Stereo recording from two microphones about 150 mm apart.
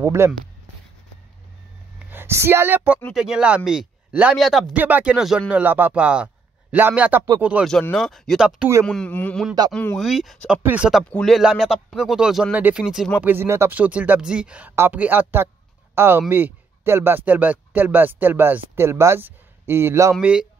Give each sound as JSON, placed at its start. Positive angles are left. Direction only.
{"t": 0.0, "sound": "speech", "side_deg": -20}
{"t": 2.0, "sound": "speech", "side_deg": -15}
{"t": 4.7, "sound": "a man's voice", "side_deg": -10}
{"t": 7.9, "sound": "speech", "side_deg": 0}
{"t": 8.8, "sound": "speech", "side_deg": 5}
{"t": 13.2, "sound": "speech", "side_deg": -15}